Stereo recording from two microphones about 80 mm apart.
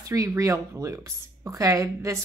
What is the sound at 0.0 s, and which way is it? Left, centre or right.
A woman's voice, right.